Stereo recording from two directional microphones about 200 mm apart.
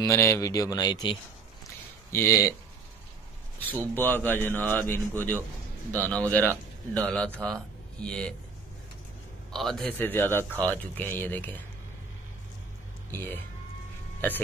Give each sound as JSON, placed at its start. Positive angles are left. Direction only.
{"t": 0.0, "sound": "speech", "side_deg": 15}
{"t": 2.1, "sound": "speech", "side_deg": 15}
{"t": 3.9, "sound": "a man's voice", "side_deg": 10}
{"t": 9.5, "sound": "speech", "side_deg": 0}
{"t": 13.1, "sound": "speech", "side_deg": 10}